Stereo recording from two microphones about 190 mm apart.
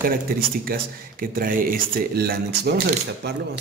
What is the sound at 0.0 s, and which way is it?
Speech, 50° right (ahead or behind).